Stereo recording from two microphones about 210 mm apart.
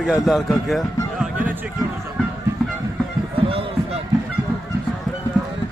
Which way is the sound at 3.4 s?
25° right (ahead or behind).